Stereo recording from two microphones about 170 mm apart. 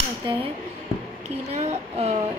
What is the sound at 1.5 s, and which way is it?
Speech, 40° right (ahead or behind).